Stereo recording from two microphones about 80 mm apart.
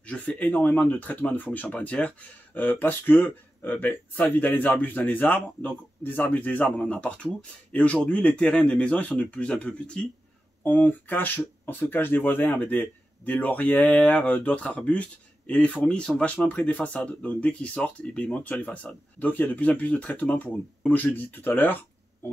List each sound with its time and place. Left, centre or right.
0.0 s speech: centre